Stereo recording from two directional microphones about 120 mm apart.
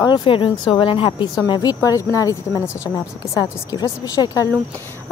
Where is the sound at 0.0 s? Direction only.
35° left (ahead or behind).